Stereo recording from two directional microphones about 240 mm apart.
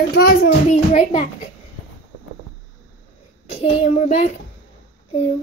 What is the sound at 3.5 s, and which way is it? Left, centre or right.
Child singing, left.